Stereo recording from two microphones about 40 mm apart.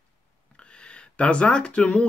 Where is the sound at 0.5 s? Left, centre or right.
Left.